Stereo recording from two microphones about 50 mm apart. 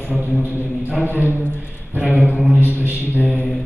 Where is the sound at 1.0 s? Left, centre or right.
Right.